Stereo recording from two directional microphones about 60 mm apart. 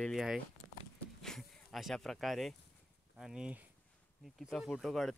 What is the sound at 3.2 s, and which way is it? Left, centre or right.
Speech, centre.